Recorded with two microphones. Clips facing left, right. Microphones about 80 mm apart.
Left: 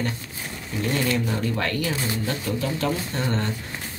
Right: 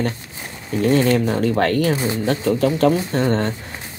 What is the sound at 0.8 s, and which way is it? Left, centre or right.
Speech, right.